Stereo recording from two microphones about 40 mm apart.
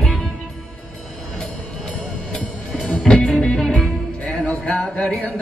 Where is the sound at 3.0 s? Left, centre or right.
Left.